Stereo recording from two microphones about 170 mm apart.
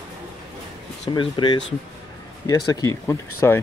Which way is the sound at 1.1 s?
25° left (ahead or behind).